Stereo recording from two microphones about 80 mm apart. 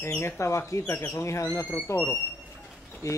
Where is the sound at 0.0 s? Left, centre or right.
Left.